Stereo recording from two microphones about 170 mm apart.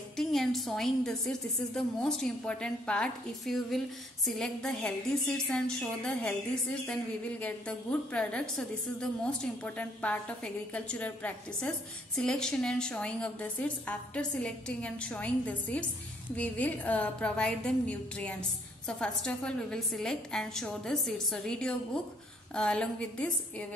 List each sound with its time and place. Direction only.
0.2 s a woman's voice: centre (ahead or behind)